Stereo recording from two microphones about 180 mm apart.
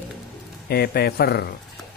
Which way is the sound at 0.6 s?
60° left (ahead or behind).